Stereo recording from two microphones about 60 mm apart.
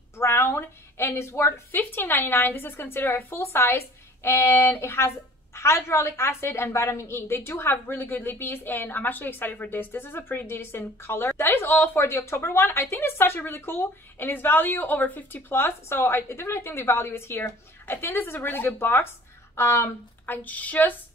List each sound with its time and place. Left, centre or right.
0.2 s a woman's voice: left
1.8 s a woman's voice: left
15.5 s a woman's voice: left
19.5 s speech: left
20.2 s speech: left